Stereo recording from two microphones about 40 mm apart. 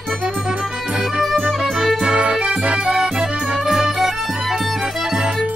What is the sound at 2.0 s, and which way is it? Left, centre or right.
Music, right.